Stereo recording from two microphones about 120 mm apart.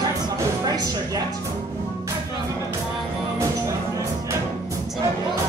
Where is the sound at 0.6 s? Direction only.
30° right (ahead or behind).